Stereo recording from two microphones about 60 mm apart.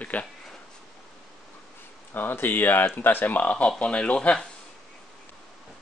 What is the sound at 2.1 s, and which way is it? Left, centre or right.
Speech, left.